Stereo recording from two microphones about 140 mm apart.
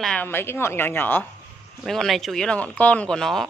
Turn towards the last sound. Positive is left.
turn(degrees=5)  # may be behind; listen again after turning